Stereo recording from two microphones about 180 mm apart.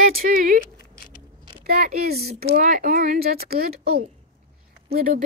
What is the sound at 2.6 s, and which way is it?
Speech, 45° right (ahead or behind).